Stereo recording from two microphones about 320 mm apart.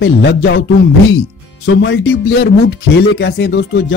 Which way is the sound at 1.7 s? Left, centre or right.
Left.